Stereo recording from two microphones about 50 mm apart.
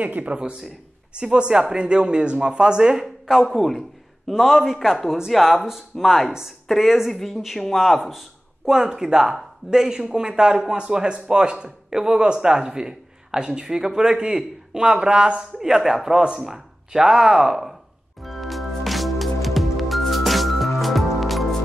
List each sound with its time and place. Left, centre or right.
0.0 s a man's voice: right; by 8.2 s centre
8.6 s a man's voice: centre
18.2 s music: centre